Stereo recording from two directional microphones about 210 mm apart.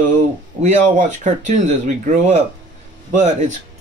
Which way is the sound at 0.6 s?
35° right (ahead or behind).